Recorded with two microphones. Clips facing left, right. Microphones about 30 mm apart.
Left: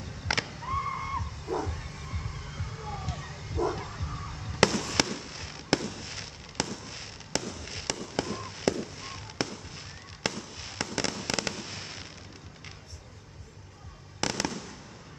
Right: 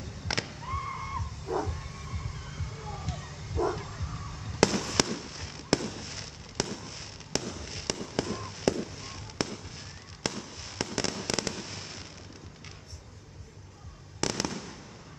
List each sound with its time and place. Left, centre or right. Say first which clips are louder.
0.0 s a sound: left 3 dB; centre
4.6 s fireworks: even; centre
7.4 s a sound: even; centre
7.8 s fireworks: even; centre
10.2 s fireworks: left 2 dB; left
10.8 s fireworks: even; centre
14.5 s fireworks: even; centre